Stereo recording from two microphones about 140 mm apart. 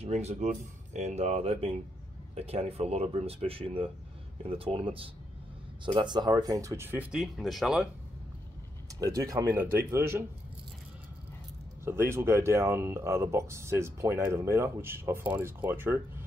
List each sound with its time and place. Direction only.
0.0 s speech: 50° right (ahead or behind); by 7.9 s 5° right (ahead or behind)
9.0 s speech: 25° right (ahead or behind)
11.8 s speech: 15° right (ahead or behind)